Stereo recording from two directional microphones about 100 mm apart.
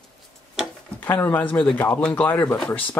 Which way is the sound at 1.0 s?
20° left (ahead or behind).